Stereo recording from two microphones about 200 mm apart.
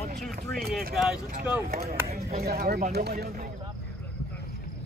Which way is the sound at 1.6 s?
50° right (ahead or behind).